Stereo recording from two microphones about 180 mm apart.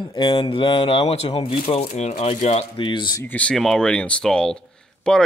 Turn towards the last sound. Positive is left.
turn(degrees=5)  # may be behind; listen again after turning